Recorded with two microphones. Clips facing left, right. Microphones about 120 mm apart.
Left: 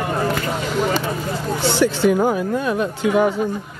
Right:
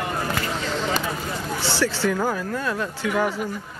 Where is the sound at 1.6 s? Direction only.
20° left (ahead or behind).